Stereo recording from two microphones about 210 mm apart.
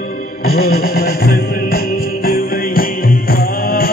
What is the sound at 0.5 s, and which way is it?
Music, 45° left (ahead or behind).